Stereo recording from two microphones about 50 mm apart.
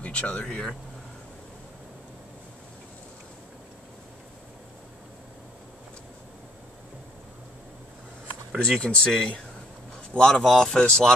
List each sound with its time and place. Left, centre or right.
0.0 s speech: left
8.6 s speech: centre